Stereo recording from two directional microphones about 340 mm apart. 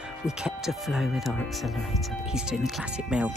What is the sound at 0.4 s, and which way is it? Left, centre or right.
Speech, centre.